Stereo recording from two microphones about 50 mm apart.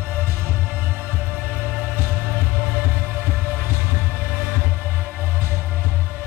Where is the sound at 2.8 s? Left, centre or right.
Right.